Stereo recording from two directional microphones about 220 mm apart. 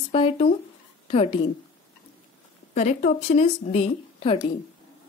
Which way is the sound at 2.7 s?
30° left (ahead or behind).